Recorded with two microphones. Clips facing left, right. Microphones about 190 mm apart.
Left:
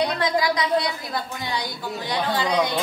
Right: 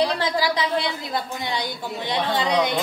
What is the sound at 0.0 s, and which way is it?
A woman's voice, 30° right (ahead or behind).